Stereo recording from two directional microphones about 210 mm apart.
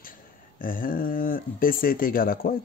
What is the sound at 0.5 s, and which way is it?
Speech, 40° left (ahead or behind).